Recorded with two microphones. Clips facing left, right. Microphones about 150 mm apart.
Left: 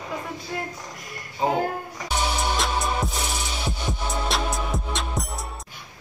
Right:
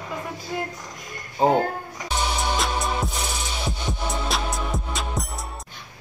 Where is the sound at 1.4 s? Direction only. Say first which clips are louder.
Right 5 dB; 35° right (ahead or behind).